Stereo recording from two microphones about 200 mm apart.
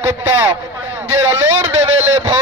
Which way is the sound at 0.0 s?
10° right (ahead or behind).